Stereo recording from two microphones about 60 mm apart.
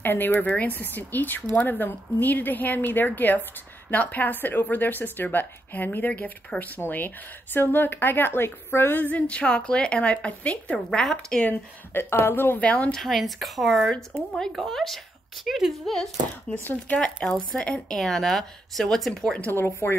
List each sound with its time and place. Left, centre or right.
0.0 s a woman's voice: left
7.5 s a woman's voice: left
9.3 s a woman's voice: centre
10.9 s speech: centre
11.9 s a woman's voice: left
12.5 s a woman's voice: left
12.9 s speech: centre
16.6 s a woman's voice: left
17.0 s speech: centre
19.5 s a woman's voice: left